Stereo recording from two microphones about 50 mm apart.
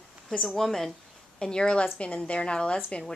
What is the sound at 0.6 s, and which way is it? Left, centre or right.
Speech, centre.